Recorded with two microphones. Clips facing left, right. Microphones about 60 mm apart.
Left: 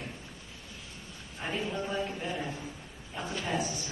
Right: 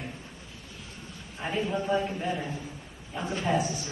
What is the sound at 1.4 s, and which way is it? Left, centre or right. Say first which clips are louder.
A woman's voice: right 5 dB; centre.